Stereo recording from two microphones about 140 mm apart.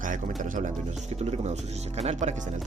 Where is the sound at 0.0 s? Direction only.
70° right (ahead or behind).